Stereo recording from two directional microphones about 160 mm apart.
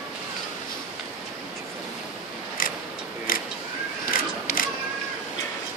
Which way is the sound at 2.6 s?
60° left (ahead or behind).